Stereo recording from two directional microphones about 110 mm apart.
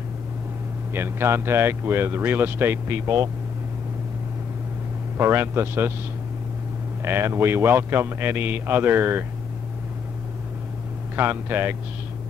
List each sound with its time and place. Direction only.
0.9 s speech: 20° right (ahead or behind)
5.1 s speech: 25° right (ahead or behind)
7.0 s speech: 20° right (ahead or behind)
11.1 s speech: 20° right (ahead or behind)